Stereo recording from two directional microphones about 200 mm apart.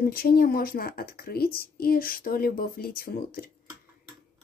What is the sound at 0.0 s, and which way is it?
A woman's voice, 50° left (ahead or behind).